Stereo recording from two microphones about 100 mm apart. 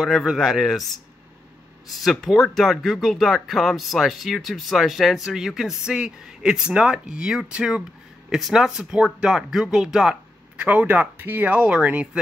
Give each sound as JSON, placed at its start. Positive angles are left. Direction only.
{"t": 0.0, "sound": "speech", "side_deg": -5}